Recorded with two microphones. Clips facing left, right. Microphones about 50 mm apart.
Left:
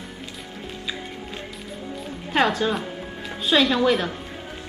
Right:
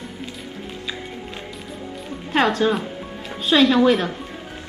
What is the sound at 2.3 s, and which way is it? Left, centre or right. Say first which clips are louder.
A woman's voice: right 3 dB; centre.